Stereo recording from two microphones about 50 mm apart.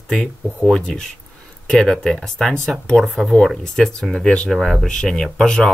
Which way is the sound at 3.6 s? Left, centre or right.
Centre.